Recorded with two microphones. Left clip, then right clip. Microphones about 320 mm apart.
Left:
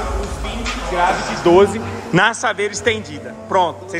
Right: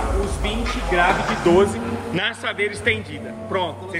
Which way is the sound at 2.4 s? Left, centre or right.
Centre.